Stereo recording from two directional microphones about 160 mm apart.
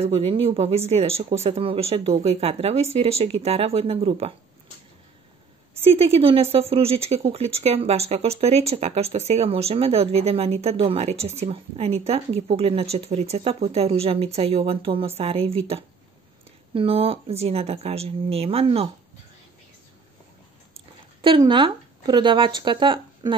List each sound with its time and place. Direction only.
0.0 s speech: 40° right (ahead or behind)
5.9 s speech: 40° right (ahead or behind)
20.7 s speech: 30° right (ahead or behind)